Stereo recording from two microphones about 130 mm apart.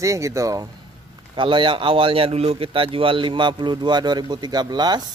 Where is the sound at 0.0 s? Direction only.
25° right (ahead or behind).